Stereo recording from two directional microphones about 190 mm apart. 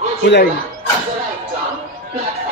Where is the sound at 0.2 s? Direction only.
65° left (ahead or behind).